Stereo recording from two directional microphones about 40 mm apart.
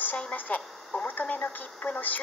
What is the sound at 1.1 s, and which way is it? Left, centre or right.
Speech, left.